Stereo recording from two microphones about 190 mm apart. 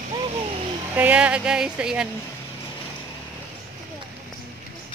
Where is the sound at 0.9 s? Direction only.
5° right (ahead or behind).